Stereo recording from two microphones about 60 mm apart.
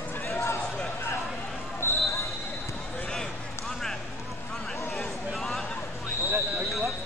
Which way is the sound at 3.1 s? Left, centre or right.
Centre.